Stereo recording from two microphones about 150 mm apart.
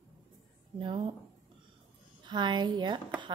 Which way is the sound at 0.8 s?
35° right (ahead or behind).